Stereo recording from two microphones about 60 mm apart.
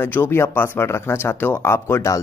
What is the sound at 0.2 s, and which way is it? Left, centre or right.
Speech, left.